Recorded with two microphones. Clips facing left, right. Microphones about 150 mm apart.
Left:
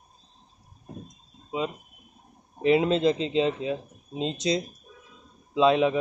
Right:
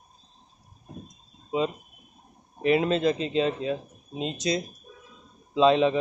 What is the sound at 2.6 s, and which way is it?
Speech, 20° left (ahead or behind).